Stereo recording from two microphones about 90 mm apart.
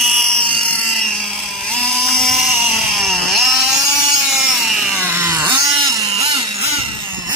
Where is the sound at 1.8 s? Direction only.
5° left (ahead or behind).